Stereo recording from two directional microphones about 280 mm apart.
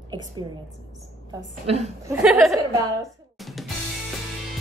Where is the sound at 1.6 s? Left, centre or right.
Right.